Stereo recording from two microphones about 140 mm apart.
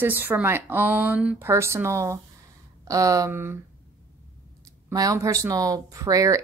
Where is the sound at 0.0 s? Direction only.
15° right (ahead or behind).